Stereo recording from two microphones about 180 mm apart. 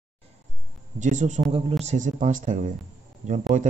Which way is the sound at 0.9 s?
40° right (ahead or behind).